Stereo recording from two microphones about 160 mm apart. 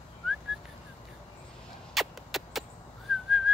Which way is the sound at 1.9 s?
Centre (ahead or behind).